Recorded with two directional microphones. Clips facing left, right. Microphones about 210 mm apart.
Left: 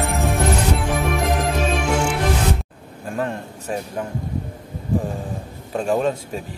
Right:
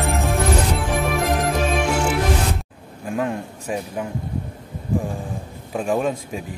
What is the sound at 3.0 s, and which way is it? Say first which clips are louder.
Speech: right 1 dB; 10° right (ahead or behind).